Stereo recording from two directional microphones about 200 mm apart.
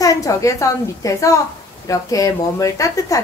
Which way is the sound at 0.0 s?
15° left (ahead or behind).